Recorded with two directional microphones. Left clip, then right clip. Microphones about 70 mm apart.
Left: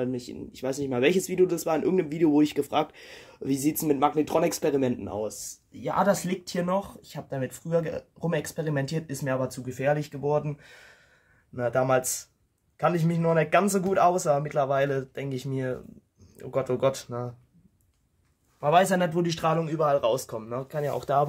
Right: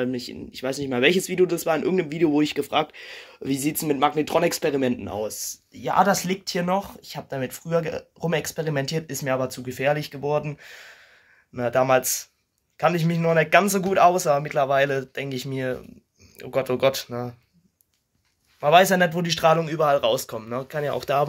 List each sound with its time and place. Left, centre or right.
0.0 s speech: centre
0.5 s speech: centre
5.1 s speech: centre
9.1 s speech: centre
9.7 s speech: centre
10.6 s speech: centre; by 17.1 s left
18.6 s speech: centre
21.0 s speech: left